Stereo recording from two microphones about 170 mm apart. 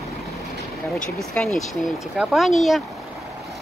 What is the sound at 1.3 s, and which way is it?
Speech, 5° left (ahead or behind).